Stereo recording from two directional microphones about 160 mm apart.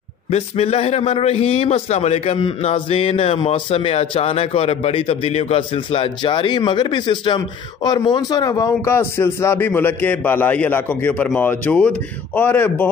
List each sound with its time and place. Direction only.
0.3 s a man's voice: 40° left (ahead or behind); by 12.8 s 10° left (ahead or behind)